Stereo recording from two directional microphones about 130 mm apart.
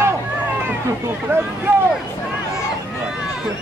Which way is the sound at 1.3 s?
15° right (ahead or behind).